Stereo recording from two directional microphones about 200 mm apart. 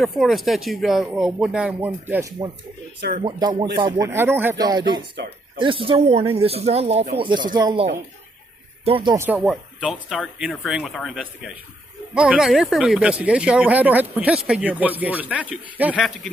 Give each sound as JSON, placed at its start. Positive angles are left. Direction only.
{"t": 0.0, "sound": "speech", "side_deg": 0}
{"t": 3.3, "sound": "speech", "side_deg": -20}
{"t": 4.1, "sound": "speech", "side_deg": -10}
{"t": 9.1, "sound": "speech", "side_deg": -10}